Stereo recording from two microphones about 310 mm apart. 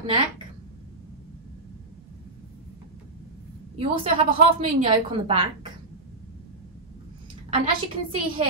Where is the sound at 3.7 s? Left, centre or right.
Centre.